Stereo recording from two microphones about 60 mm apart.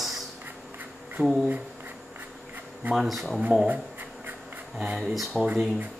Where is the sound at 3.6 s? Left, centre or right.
Right.